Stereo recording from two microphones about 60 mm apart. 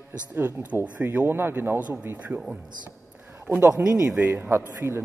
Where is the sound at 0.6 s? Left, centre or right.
Right.